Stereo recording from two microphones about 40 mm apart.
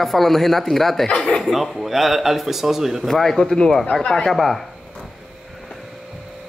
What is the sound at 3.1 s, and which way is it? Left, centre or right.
Speech, centre.